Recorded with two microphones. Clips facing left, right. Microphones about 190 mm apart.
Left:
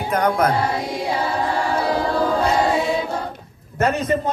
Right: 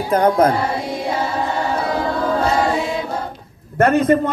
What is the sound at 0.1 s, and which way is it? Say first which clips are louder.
Music: right 4 dB; 30° right (ahead or behind).